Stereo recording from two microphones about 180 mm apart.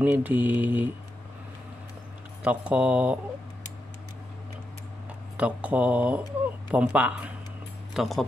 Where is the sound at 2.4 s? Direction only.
5° right (ahead or behind).